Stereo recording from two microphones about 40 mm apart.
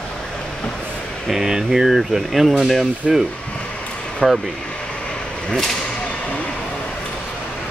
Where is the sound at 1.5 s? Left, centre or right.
Centre.